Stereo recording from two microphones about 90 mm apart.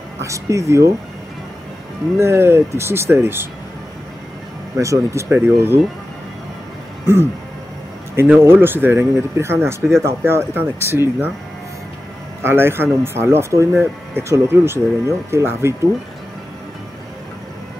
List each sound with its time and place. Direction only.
0.2 s speech: 35° right (ahead or behind)
2.1 s speech: 30° right (ahead or behind)
4.7 s speech: 35° right (ahead or behind)
8.2 s speech: 25° right (ahead or behind)
12.4 s speech: 25° right (ahead or behind)